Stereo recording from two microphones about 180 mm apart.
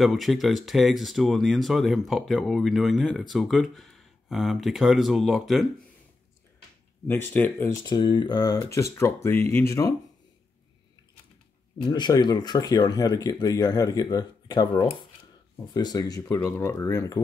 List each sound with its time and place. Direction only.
0.0 s speech: centre (ahead or behind)
7.1 s speech: 10° left (ahead or behind)
7.8 s speech: 20° left (ahead or behind)
11.8 s speech: 25° left (ahead or behind)